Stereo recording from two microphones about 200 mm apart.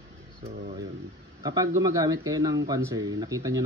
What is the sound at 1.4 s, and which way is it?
Speech, 20° right (ahead or behind).